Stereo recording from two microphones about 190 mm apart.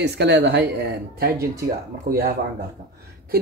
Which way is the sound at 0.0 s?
60° right (ahead or behind).